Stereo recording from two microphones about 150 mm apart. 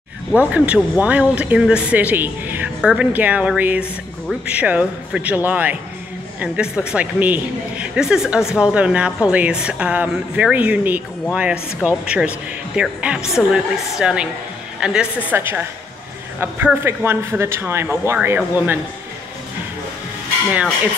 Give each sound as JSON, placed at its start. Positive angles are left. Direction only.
{"t": 0.3, "sound": "a man's voice", "side_deg": -10}